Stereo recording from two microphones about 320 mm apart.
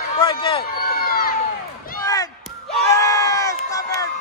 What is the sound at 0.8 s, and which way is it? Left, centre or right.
Crowd, left.